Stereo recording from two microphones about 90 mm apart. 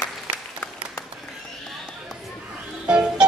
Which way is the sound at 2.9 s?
10° right (ahead or behind).